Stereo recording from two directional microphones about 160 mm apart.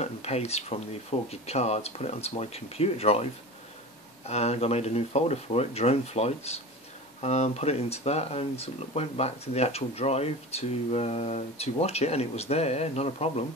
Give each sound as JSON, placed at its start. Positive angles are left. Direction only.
{"t": 0.0, "sound": "speech", "side_deg": 40}
{"t": 4.3, "sound": "speech", "side_deg": 40}